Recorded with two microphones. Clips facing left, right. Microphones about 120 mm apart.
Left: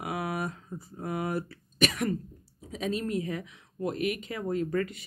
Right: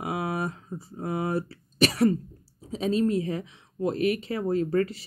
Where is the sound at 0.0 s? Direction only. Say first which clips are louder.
Right 3 dB; 25° right (ahead or behind).